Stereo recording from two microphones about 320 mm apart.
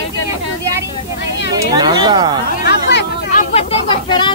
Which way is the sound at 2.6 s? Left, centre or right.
Left.